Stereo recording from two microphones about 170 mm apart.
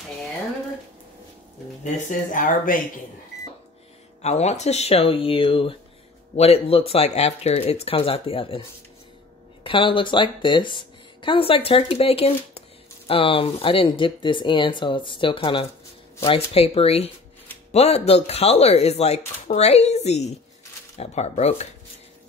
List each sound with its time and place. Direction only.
2.0 s speech: 50° left (ahead or behind)
4.2 s speech: 40° left (ahead or behind)